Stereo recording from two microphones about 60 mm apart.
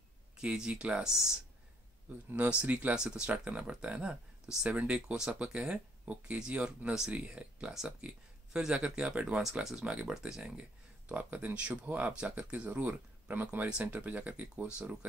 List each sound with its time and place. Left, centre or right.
0.4 s speech: centre
1.0 s speech: centre
2.3 s speech: right
9.4 s speech: centre
9.8 s speech: centre
10.6 s speech: right